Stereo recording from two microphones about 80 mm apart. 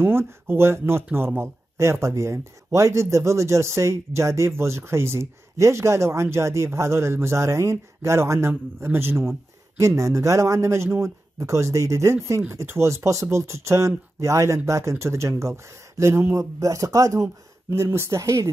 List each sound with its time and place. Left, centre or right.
0.0 s speech: right